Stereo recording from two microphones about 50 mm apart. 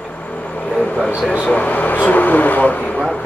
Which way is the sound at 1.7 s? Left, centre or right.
Left.